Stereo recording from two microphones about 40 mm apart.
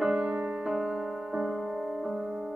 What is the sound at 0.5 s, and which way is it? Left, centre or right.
Keyboard, centre.